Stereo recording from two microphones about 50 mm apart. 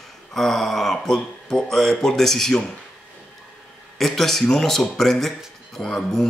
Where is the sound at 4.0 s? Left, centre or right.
Centre.